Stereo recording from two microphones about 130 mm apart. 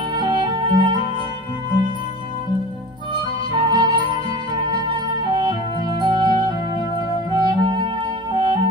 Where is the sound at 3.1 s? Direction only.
35° right (ahead or behind).